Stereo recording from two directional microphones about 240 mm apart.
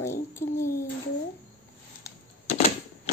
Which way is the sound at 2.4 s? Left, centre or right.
Left.